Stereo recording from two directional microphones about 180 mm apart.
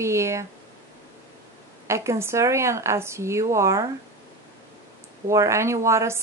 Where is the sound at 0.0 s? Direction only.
15° right (ahead or behind).